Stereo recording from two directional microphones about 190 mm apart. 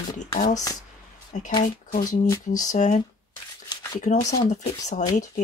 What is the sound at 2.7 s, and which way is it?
Speech, 40° left (ahead or behind).